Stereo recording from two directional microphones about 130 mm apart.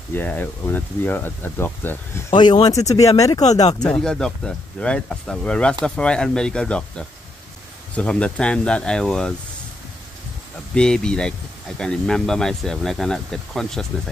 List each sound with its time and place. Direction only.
0.1 s speech: 15° left (ahead or behind)
2.3 s speech: 35° left (ahead or behind)
4.0 s speech: 5° left (ahead or behind)
10.7 s speech: 5° left (ahead or behind)